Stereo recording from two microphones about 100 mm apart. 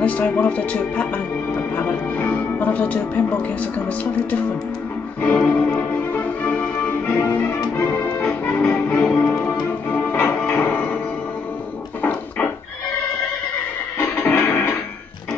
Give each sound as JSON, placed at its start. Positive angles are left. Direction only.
{"t": 0.0, "sound": "speech", "side_deg": 15}
{"t": 5.3, "sound": "music", "side_deg": 20}
{"t": 8.7, "sound": "music", "side_deg": 20}
{"t": 9.0, "sound": "music", "side_deg": 10}
{"t": 12.0, "sound": "a sound", "side_deg": 15}
{"t": 13.9, "sound": "music", "side_deg": 20}